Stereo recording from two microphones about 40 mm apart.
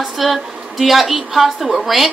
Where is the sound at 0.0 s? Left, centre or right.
Centre.